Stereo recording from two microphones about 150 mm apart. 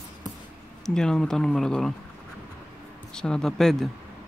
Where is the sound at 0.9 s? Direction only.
5° left (ahead or behind).